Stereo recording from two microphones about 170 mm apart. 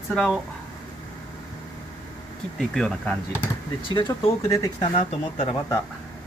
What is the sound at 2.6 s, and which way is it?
Speech, 5° left (ahead or behind).